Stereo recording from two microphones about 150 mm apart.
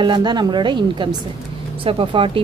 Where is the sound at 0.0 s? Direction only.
30° right (ahead or behind).